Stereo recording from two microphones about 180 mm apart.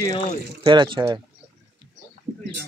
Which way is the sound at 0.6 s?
25° right (ahead or behind).